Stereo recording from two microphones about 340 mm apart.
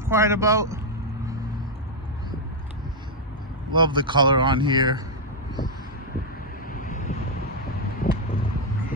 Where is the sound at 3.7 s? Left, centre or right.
Centre.